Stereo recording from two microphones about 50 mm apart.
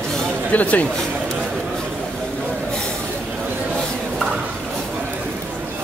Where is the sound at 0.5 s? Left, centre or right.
Left.